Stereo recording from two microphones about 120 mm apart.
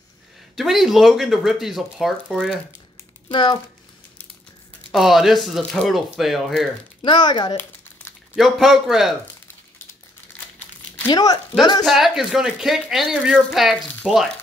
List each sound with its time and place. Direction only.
0.6 s speech: centre (ahead or behind)
3.3 s speech: 40° left (ahead or behind)
4.9 s speech: centre (ahead or behind)
7.0 s speech: 40° left (ahead or behind)
8.4 s speech: centre (ahead or behind)
11.1 s speech: 35° left (ahead or behind)
11.8 s speech: centre (ahead or behind)